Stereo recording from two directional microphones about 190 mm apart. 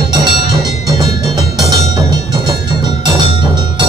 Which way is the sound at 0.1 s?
20° right (ahead or behind).